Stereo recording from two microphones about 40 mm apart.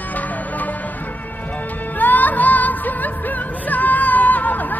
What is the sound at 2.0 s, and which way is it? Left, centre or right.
Music, left.